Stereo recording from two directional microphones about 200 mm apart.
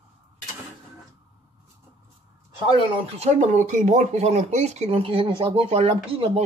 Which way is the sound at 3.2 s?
35° right (ahead or behind).